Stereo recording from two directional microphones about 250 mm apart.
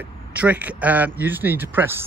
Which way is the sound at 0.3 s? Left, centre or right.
Centre.